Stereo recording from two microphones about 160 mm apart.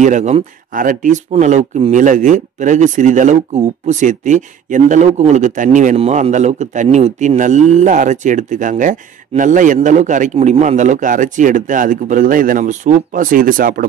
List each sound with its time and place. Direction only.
0.0 s speech: 50° right (ahead or behind)